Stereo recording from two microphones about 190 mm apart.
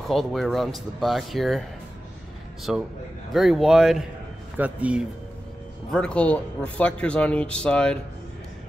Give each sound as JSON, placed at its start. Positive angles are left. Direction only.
{"t": 0.1, "sound": "a man's voice", "side_deg": 0}
{"t": 2.7, "sound": "a man's voice", "side_deg": 0}
{"t": 5.9, "sound": "a man's voice", "side_deg": 5}